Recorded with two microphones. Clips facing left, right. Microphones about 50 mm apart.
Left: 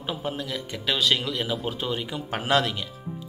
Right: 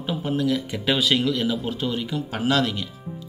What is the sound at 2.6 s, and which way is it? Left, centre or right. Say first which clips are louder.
Speech: right 3 dB; centre.